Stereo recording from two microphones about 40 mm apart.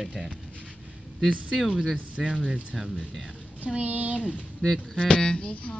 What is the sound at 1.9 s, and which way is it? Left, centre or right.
Speech, right.